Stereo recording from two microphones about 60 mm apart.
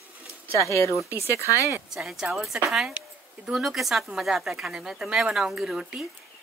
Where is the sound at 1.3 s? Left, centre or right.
Left.